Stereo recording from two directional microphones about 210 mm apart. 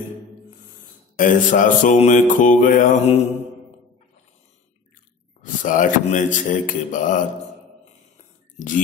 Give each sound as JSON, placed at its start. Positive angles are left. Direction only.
{"t": 1.1, "sound": "mantra", "side_deg": 40}
{"t": 5.4, "sound": "mantra", "side_deg": 40}
{"t": 8.5, "sound": "speech", "side_deg": 40}